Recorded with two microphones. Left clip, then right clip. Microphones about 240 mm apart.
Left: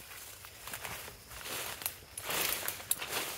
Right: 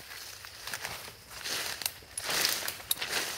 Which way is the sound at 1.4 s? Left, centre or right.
Right.